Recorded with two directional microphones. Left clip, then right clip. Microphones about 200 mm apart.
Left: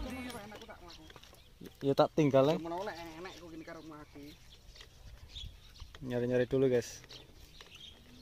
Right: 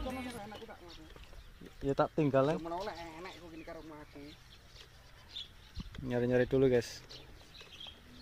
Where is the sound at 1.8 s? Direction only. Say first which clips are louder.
Left 3 dB; 25° left (ahead or behind).